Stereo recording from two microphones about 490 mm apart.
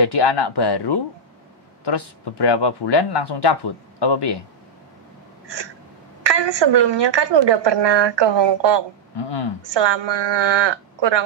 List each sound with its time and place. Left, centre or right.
0.0 s speech: left
6.2 s a woman's voice: right
9.1 s speech: left
9.8 s a woman's voice: right